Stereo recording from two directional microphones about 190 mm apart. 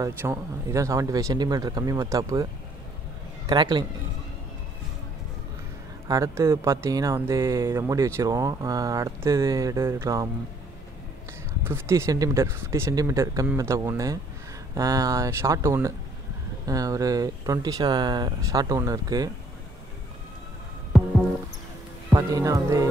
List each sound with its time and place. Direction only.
0.0 s speech: 15° right (ahead or behind)
3.4 s speech: 20° right (ahead or behind)
6.0 s speech: 15° right (ahead or behind)
11.6 s speech: 15° right (ahead or behind)
22.1 s speech: 15° right (ahead or behind)